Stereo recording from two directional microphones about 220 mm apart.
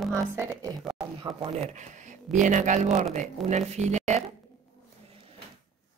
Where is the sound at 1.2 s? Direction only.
25° right (ahead or behind).